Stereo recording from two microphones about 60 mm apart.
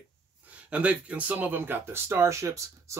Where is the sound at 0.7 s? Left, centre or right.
Right.